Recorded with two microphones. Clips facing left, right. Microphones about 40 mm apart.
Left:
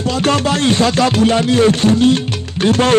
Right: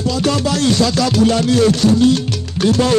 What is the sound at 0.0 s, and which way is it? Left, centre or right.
Music, left.